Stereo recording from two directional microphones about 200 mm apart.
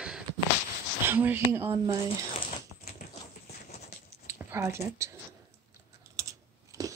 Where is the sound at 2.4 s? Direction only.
30° left (ahead or behind).